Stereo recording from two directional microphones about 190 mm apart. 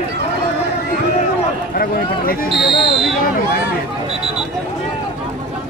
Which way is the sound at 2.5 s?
Centre (ahead or behind).